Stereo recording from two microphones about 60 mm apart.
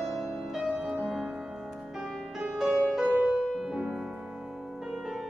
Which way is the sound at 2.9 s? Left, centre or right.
Centre.